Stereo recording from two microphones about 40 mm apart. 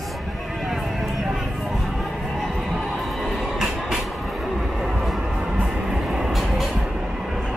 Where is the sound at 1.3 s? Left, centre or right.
Centre.